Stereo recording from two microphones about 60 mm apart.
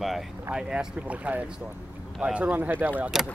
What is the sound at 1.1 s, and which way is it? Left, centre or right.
Speech, right.